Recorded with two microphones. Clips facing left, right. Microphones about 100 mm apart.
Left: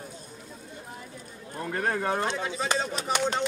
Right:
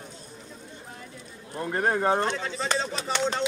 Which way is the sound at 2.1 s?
10° left (ahead or behind).